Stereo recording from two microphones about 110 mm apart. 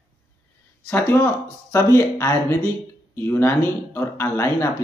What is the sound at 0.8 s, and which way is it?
Speech, 15° left (ahead or behind).